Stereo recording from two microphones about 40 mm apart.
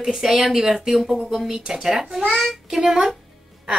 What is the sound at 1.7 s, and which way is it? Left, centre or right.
A woman's voice, centre.